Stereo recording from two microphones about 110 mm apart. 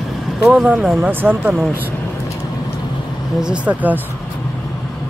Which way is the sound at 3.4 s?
10° right (ahead or behind).